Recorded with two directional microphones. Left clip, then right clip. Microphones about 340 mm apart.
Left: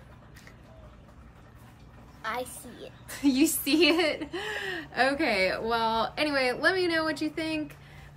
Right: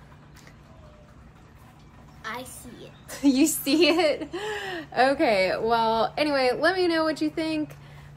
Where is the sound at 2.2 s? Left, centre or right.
Centre.